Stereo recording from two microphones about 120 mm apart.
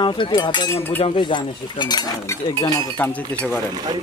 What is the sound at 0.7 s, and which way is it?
Speech, 20° left (ahead or behind).